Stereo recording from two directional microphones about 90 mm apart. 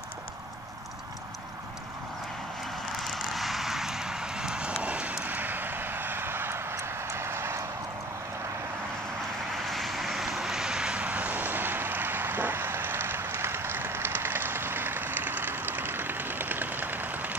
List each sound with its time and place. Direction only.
3.0 s vehicle: centre (ahead or behind); by 7.6 s 30° right (ahead or behind)
9.5 s vehicle: centre (ahead or behind); by 17.4 s 20° right (ahead or behind)